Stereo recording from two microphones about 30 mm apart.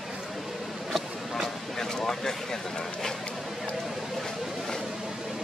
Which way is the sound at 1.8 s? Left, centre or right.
Centre.